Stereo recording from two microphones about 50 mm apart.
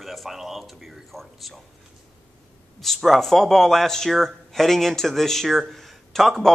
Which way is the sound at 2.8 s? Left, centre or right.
Centre.